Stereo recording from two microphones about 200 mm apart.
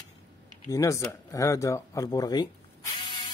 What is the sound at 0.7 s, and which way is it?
Speech, 15° left (ahead or behind).